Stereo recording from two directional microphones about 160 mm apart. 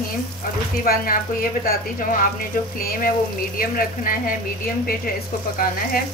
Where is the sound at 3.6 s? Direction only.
65° left (ahead or behind).